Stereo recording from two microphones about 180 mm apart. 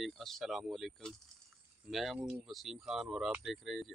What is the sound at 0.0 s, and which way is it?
Speech, centre (ahead or behind).